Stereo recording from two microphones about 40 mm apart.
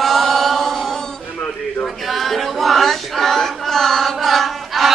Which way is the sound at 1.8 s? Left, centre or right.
Centre.